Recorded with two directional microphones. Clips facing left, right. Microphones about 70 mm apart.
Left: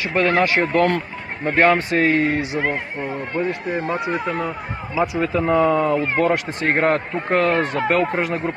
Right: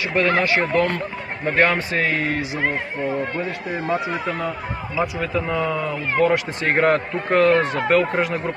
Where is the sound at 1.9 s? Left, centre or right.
Left.